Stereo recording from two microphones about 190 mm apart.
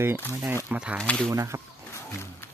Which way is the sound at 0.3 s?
10° right (ahead or behind).